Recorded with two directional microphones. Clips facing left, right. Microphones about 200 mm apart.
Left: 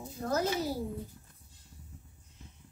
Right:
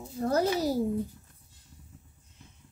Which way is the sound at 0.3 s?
35° right (ahead or behind).